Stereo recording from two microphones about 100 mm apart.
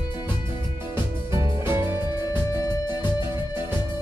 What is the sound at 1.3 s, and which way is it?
Music, 25° right (ahead or behind).